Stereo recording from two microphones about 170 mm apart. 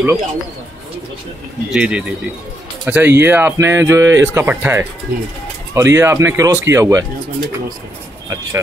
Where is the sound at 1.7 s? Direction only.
5° right (ahead or behind).